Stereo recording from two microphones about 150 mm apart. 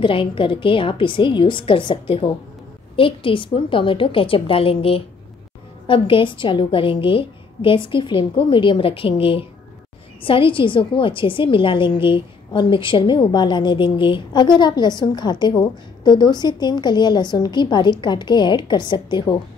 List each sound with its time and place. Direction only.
0.0 s a woman's voice: 35° left (ahead or behind)